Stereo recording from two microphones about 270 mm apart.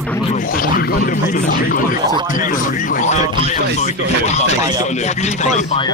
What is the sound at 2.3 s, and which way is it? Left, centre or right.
Speech, left.